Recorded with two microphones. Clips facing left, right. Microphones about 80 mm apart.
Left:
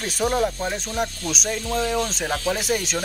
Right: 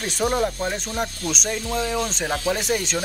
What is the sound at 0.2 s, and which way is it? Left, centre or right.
Speech, centre.